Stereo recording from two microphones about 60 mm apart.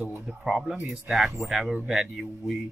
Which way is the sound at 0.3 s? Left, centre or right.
Centre.